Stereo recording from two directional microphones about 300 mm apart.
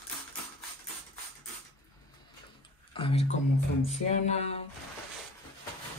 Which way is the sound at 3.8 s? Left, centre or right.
Left.